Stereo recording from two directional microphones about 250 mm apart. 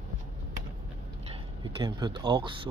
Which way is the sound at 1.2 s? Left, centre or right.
Right.